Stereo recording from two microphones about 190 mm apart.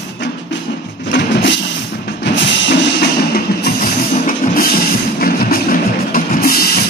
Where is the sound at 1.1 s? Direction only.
70° left (ahead or behind).